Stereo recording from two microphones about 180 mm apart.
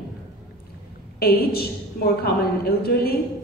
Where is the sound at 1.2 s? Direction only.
60° left (ahead or behind).